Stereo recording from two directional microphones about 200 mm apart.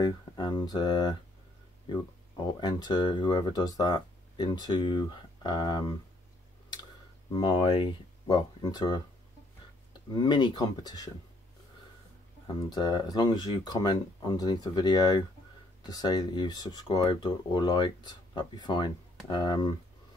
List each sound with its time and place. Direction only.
0.0 s speech: 20° left (ahead or behind)
2.6 s speech: 20° left (ahead or behind)
7.3 s speech: 20° left (ahead or behind)
10.1 s speech: 20° left (ahead or behind)
12.6 s speech: 20° left (ahead or behind)